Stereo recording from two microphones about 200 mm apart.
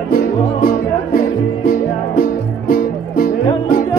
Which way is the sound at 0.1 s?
50° left (ahead or behind).